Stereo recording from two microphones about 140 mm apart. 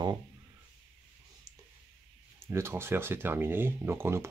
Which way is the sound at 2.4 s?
20° right (ahead or behind).